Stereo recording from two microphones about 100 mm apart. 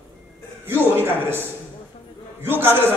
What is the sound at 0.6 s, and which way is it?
A man's voice, 20° right (ahead or behind).